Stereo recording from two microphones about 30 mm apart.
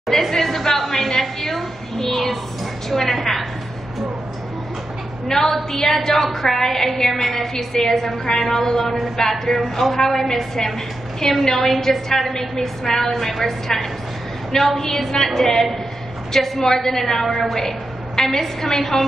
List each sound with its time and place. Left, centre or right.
0.1 s a sound: centre
2.9 s a woman's voice: centre
5.3 s a woman's voice: centre
9.6 s a woman's voice: centre
10.0 s a woman's voice: centre
13.3 s a woman's voice: centre
14.5 s a woman's voice: left
15.2 s a woman's voice: centre